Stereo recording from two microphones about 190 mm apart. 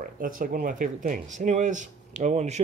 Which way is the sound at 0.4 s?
45° right (ahead or behind).